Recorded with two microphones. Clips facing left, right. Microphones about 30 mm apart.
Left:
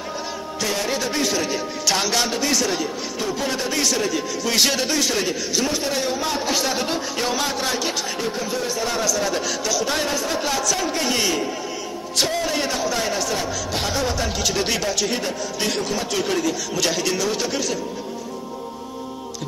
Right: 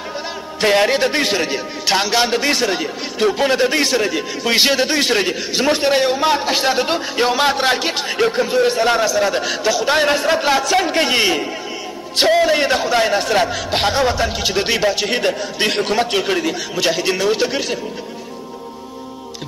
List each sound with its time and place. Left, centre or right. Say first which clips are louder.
0.6 s a man's voice: right 10 dB; right
2.0 s speech: right 6 dB; right
2.2 s a man's voice: right 5 dB; right
9.0 s a man's voice: right 5 dB; right
14.1 s speech: right 4 dB; right
15.0 s a man's voice: right 6 dB; right
16.2 s a man's voice: right 3 dB; right